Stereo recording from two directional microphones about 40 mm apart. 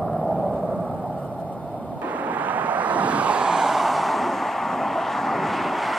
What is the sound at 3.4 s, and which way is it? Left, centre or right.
Vehicle, centre.